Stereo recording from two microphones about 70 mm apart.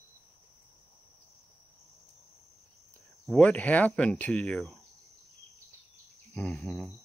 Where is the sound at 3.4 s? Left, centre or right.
Left.